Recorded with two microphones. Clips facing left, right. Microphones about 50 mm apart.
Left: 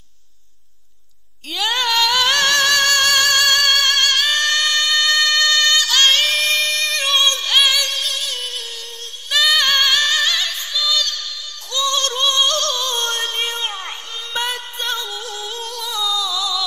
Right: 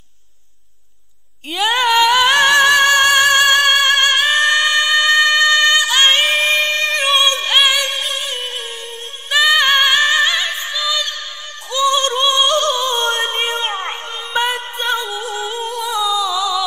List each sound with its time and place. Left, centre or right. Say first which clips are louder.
1.5 s music: right 5 dB; centre
9.3 s singing: right 4 dB; right
11.7 s a sound: right 5 dB; right